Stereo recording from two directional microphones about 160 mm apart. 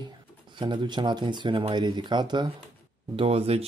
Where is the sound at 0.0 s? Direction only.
30° right (ahead or behind).